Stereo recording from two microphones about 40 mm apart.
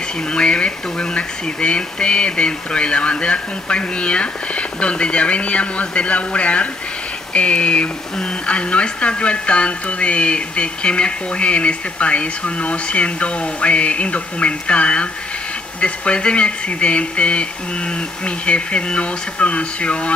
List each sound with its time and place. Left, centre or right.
0.3 s speech: left